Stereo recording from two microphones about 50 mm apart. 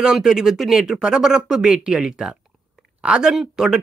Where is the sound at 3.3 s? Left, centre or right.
Centre.